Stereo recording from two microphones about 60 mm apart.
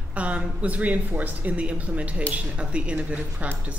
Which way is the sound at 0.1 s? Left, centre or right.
Right.